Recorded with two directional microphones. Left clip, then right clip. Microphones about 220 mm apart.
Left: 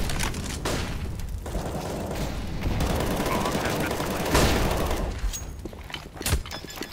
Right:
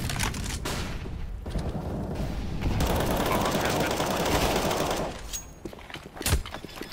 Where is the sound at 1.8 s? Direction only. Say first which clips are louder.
Left 4 dB; 65° left (ahead or behind).